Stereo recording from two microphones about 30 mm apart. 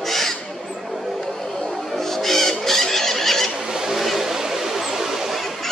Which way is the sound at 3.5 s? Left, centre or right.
Centre.